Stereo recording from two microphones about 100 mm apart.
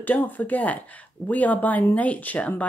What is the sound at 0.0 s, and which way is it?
Speech, 20° left (ahead or behind).